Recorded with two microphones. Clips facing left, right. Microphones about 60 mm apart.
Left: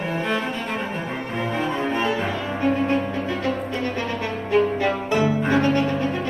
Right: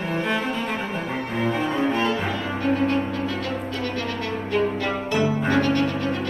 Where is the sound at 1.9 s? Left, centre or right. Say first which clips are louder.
Even; centre.